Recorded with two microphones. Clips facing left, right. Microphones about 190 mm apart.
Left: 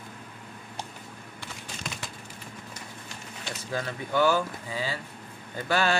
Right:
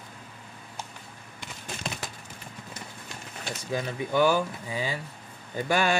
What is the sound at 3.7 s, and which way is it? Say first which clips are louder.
Speech: right 2 dB; 15° right (ahead or behind).